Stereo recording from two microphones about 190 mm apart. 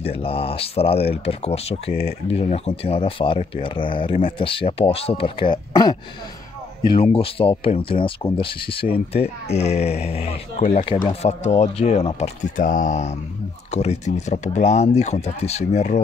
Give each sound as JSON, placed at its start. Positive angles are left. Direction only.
{"t": 0.0, "sound": "speech", "side_deg": 30}